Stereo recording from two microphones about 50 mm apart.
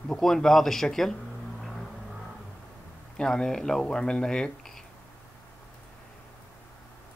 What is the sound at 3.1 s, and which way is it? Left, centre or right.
Speech, centre.